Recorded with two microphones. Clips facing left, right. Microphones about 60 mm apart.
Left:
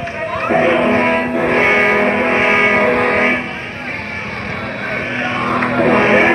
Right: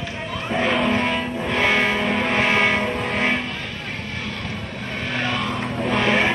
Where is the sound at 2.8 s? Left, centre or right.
Left.